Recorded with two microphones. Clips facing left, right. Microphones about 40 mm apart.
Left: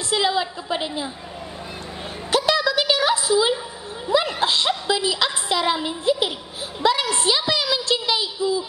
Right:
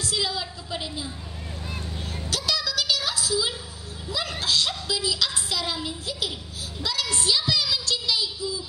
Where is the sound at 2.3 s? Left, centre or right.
Left.